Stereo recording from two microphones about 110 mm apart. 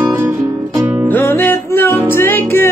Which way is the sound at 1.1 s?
20° left (ahead or behind).